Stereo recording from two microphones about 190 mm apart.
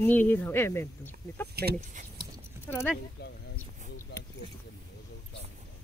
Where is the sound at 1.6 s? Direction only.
55° right (ahead or behind).